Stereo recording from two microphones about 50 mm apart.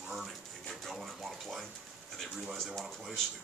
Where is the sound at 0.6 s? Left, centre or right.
Centre.